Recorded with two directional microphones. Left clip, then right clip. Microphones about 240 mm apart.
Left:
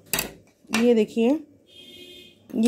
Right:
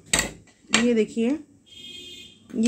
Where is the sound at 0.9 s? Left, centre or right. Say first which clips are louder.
Left 3 dB; centre.